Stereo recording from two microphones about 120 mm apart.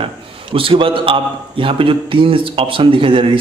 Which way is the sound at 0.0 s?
50° right (ahead or behind).